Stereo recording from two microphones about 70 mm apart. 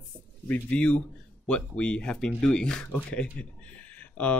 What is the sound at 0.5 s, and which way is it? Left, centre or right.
Speech, centre.